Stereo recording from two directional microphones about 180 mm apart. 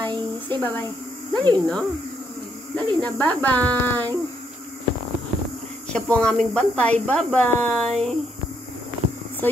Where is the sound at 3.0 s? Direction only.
10° left (ahead or behind).